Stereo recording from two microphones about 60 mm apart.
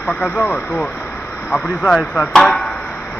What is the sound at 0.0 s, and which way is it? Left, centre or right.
Speech, left.